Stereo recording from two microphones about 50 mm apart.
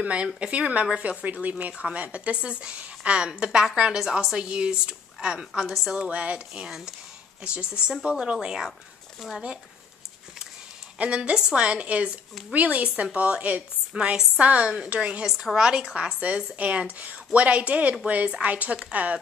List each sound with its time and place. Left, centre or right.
0.0 s a woman's voice: right
1.2 s a woman's voice: right; by 6.0 s centre
6.0 s a woman's voice: right
9.2 s speech: centre
11.0 s a woman's voice: right
13.9 s a woman's voice: centre
15.2 s a woman's voice: centre; by 19.1 s right